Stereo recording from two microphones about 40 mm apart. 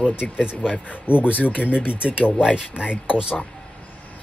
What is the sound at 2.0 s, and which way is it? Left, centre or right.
Speech, right.